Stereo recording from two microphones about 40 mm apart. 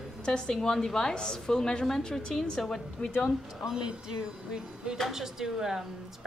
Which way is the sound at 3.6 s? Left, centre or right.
Centre.